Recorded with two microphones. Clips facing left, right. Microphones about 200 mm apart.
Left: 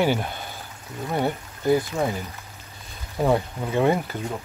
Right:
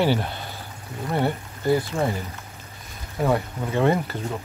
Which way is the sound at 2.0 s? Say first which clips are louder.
Even; centre (ahead or behind).